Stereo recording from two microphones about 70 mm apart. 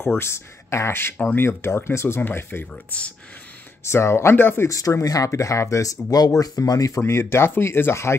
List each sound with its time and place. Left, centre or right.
0.2 s speech: left
2.7 s speech: centre
3.8 s speech: left
4.6 s speech: left
7.1 s speech: left